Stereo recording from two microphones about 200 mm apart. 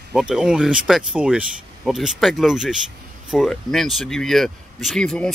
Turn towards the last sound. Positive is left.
turn(degrees=5)  # may be behind; listen again after turning